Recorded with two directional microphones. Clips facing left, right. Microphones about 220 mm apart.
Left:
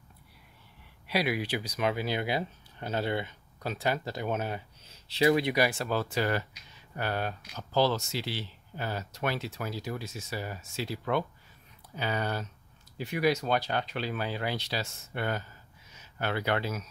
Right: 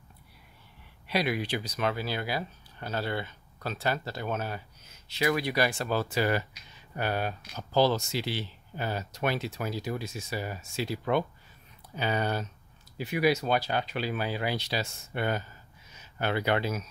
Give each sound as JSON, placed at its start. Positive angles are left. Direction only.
{"t": 1.0, "sound": "speech", "side_deg": 10}
{"t": 4.8, "sound": "speech", "side_deg": 30}
{"t": 5.6, "sound": "speech", "side_deg": 5}
{"t": 12.9, "sound": "speech", "side_deg": -5}